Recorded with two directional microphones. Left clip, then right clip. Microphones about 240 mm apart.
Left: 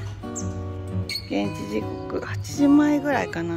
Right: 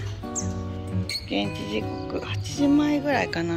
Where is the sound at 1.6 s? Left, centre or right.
Centre.